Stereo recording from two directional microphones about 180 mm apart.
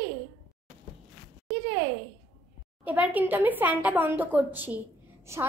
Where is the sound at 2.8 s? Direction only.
10° right (ahead or behind).